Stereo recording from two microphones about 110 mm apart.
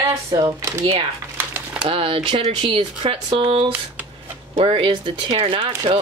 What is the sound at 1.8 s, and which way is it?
Speech, 55° right (ahead or behind).